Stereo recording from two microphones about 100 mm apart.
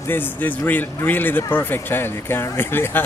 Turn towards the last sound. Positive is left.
turn(degrees=20)  # may be behind; listen again after turning